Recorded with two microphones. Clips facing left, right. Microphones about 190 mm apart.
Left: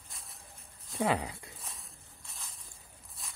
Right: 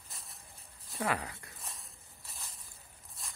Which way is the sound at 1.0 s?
25° left (ahead or behind).